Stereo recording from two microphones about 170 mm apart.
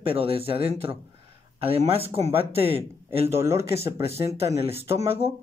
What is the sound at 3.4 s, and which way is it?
Speech, 15° right (ahead or behind).